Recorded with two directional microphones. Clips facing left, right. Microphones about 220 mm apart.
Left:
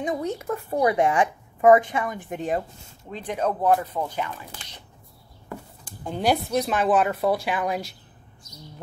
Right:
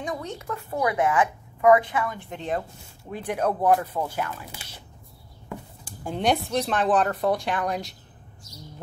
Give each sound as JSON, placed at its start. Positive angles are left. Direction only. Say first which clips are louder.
{"t": 0.5, "sound": "a woman's voice", "louder": "left 3 dB", "side_deg": 30}
{"t": 3.1, "sound": "speech", "louder": "right 1 dB", "side_deg": -10}